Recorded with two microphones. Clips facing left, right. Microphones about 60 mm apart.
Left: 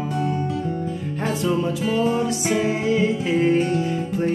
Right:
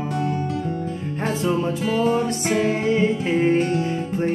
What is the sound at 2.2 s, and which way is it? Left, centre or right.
Music, right.